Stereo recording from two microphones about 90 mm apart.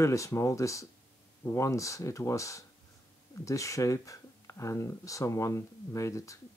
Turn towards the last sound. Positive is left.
turn(degrees=35)  # may be behind; listen again after turning